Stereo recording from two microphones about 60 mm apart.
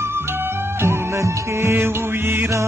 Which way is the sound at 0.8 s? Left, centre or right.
Right.